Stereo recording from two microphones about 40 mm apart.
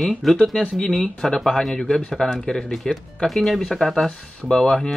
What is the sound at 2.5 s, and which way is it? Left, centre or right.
Speech, centre.